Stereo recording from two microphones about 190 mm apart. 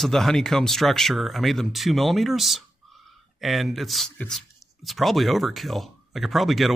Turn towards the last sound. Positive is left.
turn(degrees=0)  # may be behind; listen again after turning